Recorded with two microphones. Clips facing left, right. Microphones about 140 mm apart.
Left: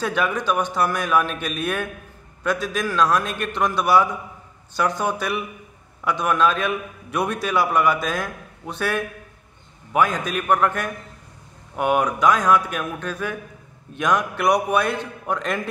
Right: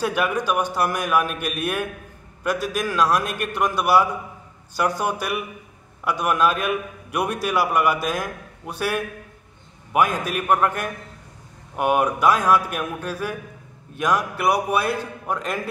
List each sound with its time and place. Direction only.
0.0 s a man's voice: 10° right (ahead or behind)